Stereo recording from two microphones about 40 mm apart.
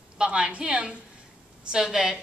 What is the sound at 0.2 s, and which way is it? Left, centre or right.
Speech, right.